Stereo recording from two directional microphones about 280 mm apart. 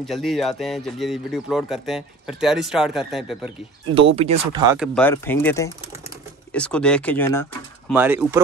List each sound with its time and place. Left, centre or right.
0.0 s a man's voice: centre
3.9 s speech: centre
4.7 s a man's voice: centre
7.9 s speech: centre